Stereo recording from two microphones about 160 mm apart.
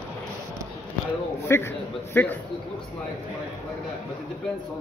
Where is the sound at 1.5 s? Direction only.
15° left (ahead or behind).